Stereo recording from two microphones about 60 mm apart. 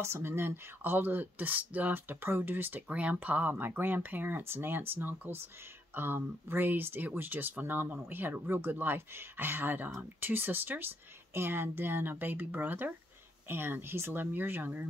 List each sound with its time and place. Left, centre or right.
0.0 s speech: right